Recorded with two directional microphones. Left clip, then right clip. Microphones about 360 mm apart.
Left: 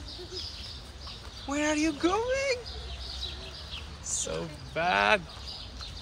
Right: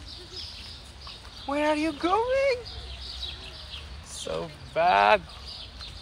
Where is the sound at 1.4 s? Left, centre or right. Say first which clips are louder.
Right 3 dB; centre.